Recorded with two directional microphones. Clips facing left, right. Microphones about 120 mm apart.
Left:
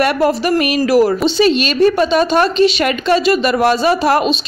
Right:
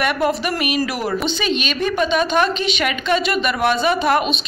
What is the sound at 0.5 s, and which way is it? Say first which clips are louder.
A woman's voice: left 7 dB; 35° left (ahead or behind).